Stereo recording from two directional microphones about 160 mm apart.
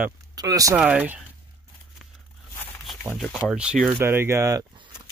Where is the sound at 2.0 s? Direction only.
Centre (ahead or behind).